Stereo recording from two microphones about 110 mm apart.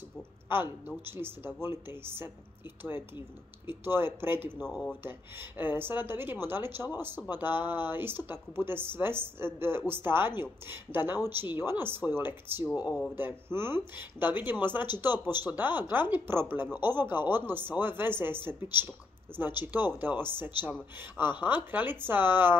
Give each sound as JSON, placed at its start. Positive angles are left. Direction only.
{"t": 0.5, "sound": "speech", "side_deg": -20}
{"t": 3.6, "sound": "speech", "side_deg": -20}